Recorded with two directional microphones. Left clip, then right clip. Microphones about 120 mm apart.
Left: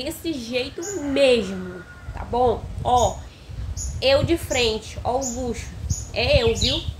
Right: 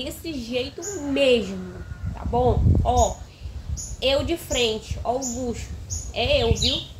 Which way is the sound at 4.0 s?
20° left (ahead or behind).